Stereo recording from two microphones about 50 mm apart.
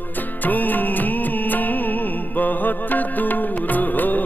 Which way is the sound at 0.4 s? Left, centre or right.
Left.